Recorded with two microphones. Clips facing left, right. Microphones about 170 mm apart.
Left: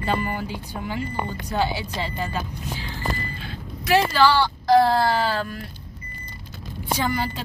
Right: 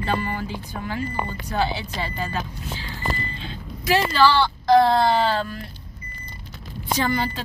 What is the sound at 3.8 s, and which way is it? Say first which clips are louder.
Speech: even; 10° left (ahead or behind).